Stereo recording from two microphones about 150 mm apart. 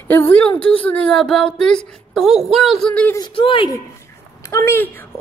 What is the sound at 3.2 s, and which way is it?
Speech, 35° left (ahead or behind).